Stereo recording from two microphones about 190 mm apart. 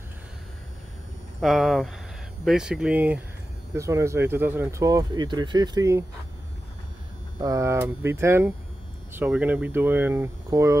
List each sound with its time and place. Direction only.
1.4 s speech: centre (ahead or behind); by 6.0 s 15° right (ahead or behind)
7.4 s speech: 15° right (ahead or behind)